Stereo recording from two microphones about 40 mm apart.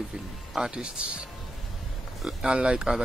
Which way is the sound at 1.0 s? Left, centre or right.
Right.